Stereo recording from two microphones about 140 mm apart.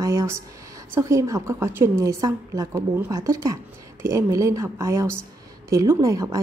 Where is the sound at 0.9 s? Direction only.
20° right (ahead or behind).